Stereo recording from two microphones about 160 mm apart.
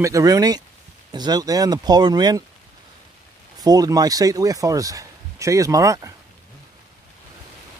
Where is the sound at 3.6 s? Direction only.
25° right (ahead or behind).